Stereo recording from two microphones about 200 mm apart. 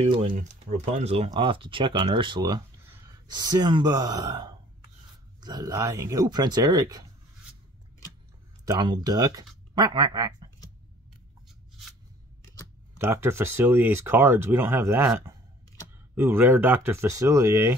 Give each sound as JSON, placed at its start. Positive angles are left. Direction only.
{"t": 0.0, "sound": "speech", "side_deg": -25}
{"t": 8.6, "sound": "speech", "side_deg": -20}
{"t": 12.9, "sound": "speech", "side_deg": -10}